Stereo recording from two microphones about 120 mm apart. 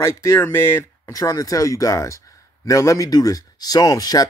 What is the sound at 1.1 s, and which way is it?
Speech, 30° left (ahead or behind).